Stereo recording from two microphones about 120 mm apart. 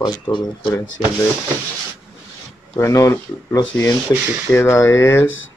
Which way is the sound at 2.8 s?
25° left (ahead or behind).